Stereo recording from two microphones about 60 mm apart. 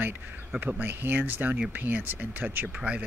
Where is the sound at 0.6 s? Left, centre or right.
Right.